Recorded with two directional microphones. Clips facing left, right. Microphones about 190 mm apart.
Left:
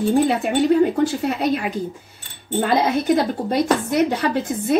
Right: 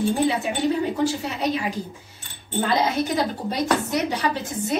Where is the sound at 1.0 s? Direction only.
55° left (ahead or behind).